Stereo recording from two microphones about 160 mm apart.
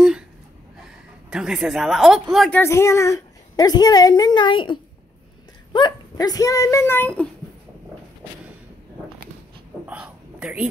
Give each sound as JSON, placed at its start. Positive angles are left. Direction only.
{"t": 1.3, "sound": "speech", "side_deg": -5}
{"t": 2.5, "sound": "a woman's voice", "side_deg": 15}
{"t": 9.8, "sound": "a sound", "side_deg": -10}